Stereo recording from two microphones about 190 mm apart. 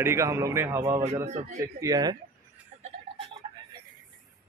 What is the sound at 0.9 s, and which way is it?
Speech, 30° right (ahead or behind).